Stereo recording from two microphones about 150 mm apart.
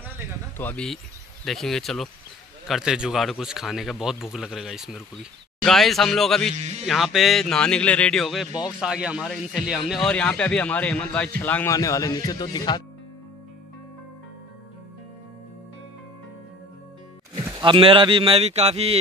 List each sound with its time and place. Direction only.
0.6 s speech: 10° left (ahead or behind)
1.4 s speech: centre (ahead or behind)
6.5 s speech: 45° right (ahead or behind)
6.9 s speech: centre (ahead or behind); by 12.8 s 30° left (ahead or behind)
17.5 s speech: 30° right (ahead or behind)